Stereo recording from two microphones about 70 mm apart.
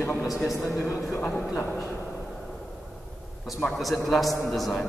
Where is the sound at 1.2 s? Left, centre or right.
Left.